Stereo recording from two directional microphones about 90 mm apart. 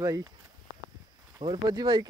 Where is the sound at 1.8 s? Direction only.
60° right (ahead or behind).